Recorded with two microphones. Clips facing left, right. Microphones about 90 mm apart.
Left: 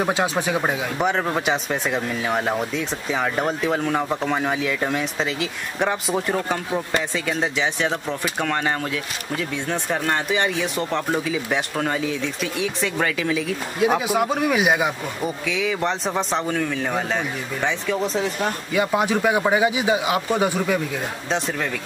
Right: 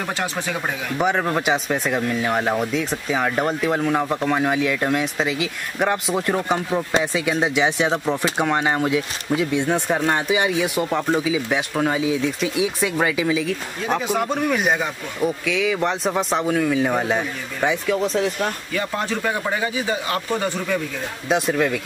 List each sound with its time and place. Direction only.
0.0 s speech: 15° left (ahead or behind)
0.9 s speech: 5° right (ahead or behind)
6.3 s speech: 15° right (ahead or behind)
17.9 s speech: centre (ahead or behind)
18.8 s speech: 15° left (ahead or behind)
21.3 s speech: 5° right (ahead or behind)